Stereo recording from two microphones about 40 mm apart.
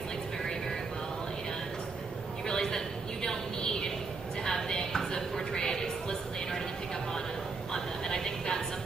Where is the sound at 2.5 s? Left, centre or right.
Centre.